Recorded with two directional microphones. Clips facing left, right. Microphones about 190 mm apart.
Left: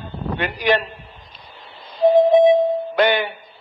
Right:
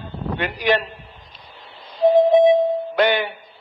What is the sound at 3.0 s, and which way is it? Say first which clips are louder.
Speech: left 1 dB; 50° left (ahead or behind).